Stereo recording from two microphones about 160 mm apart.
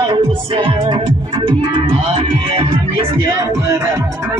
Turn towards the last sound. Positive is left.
turn(degrees=-20)  # may be behind; listen again after turning